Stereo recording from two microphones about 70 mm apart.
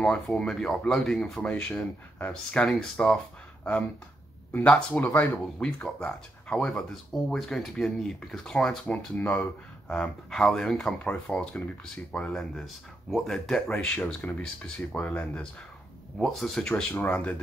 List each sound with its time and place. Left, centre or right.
0.0 s speech: centre
4.5 s speech: left
5.6 s speech: centre
6.7 s speech: centre
16.2 s speech: centre
17.1 s speech: centre